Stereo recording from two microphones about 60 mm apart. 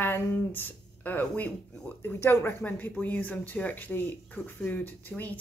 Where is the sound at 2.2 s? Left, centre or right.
Left.